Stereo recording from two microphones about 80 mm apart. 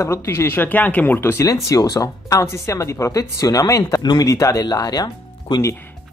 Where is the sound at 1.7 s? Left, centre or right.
Left.